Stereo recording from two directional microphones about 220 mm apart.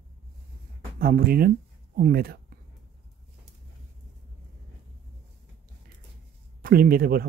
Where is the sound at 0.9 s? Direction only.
45° right (ahead or behind).